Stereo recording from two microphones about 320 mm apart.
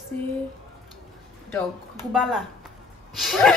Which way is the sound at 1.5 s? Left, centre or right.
Centre.